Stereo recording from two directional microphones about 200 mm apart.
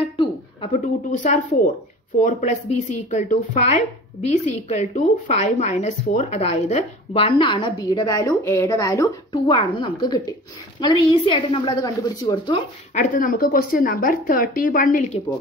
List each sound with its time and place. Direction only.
0.0 s a sound: 25° left (ahead or behind)
1.1 s a woman's voice: 40° left (ahead or behind); by 12.6 s 20° left (ahead or behind)
12.9 s speech: 40° left (ahead or behind)